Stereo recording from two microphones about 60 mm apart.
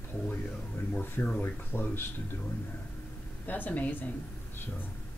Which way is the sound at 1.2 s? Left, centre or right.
Left.